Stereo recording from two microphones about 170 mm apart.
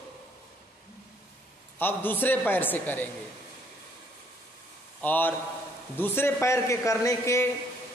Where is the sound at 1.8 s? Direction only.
10° left (ahead or behind).